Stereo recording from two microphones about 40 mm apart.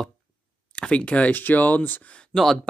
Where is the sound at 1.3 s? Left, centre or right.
Left.